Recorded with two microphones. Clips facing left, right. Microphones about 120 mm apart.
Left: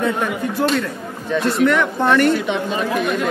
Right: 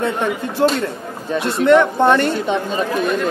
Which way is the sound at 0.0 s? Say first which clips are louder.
Even; 25° right (ahead or behind).